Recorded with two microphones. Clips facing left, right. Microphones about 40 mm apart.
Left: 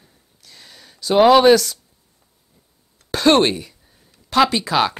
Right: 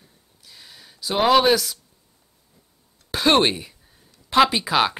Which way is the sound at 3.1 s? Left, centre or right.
Centre.